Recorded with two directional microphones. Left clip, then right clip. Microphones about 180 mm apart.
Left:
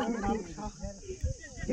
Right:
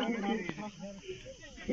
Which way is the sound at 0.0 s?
40° right (ahead or behind).